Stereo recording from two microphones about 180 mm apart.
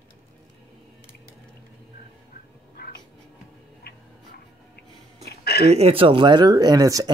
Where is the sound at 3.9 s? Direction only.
65° left (ahead or behind).